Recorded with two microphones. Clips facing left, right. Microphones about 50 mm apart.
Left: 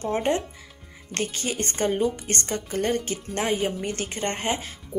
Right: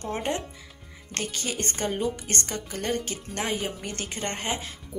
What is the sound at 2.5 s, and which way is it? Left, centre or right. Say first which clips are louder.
Speech: left 6 dB; left.